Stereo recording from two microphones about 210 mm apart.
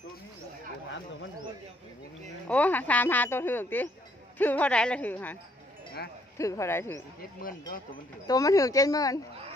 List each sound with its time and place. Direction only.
2.4 s speech: 5° left (ahead or behind)
8.3 s speech: 15° left (ahead or behind)